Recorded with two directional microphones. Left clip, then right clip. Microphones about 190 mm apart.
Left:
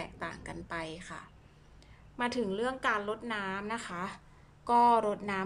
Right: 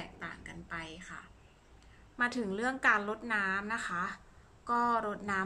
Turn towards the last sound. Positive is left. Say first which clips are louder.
# left 4 dB
turn(degrees=10)  # may be behind; listen again after turning